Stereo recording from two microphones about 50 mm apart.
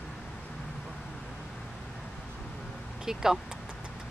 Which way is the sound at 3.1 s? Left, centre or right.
Centre.